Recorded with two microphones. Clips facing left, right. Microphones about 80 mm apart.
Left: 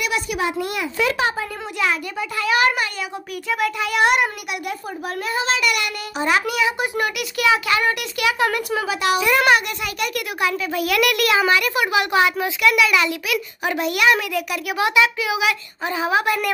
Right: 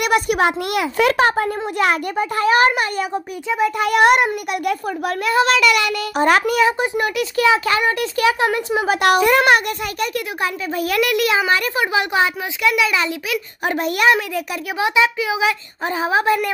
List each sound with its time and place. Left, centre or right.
0.0 s a child's voice: right
3.4 s a child's voice: right
3.7 s a child's voice: right
5.0 s speech: right
6.1 s a child's voice: right
7.0 s a child's voice: right
8.8 s a child's voice: right
11.1 s a child's voice: right
13.7 s a child's voice: right
14.8 s a child's voice: right